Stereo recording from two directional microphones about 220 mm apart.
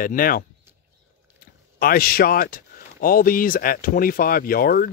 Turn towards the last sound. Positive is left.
turn(degrees=40)  # may be behind; listen again after turning